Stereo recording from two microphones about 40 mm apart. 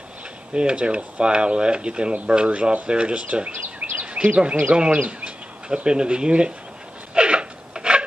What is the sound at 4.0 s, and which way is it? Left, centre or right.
Speech, right.